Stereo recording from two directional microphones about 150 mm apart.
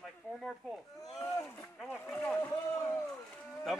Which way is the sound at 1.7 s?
15° left (ahead or behind).